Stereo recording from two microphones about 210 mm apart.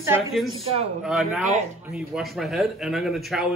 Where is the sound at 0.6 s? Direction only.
30° right (ahead or behind).